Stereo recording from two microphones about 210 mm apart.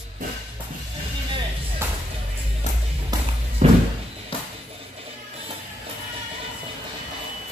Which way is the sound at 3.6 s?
35° right (ahead or behind).